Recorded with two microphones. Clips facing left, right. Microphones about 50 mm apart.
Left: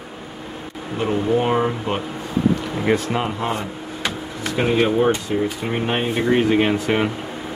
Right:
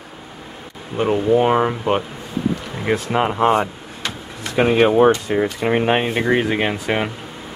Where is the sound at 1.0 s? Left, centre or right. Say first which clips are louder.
Right 4 dB; centre.